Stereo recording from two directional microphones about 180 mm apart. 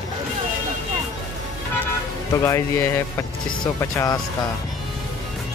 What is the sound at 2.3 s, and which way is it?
Speech, 15° left (ahead or behind).